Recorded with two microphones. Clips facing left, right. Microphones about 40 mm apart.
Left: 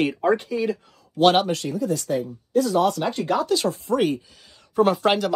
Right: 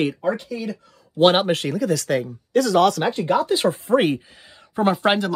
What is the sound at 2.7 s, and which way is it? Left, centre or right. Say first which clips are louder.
Speech: right 5 dB; right.